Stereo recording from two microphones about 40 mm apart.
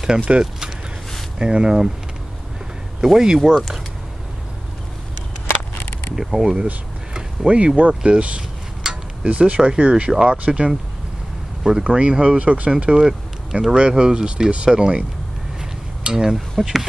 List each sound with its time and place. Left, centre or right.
0.0 s speech: right
3.0 s speech: centre
3.5 s speech: centre
5.8 s a sound: left
6.3 s speech: right
8.8 s a sound: centre
9.2 s speech: right
11.8 s speech: right
12.4 s speech: right
13.0 s speech: centre
13.7 s speech: centre
16.0 s a sound: centre
16.6 s speech: centre